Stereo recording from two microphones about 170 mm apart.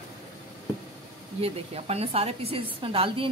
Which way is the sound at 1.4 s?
35° right (ahead or behind).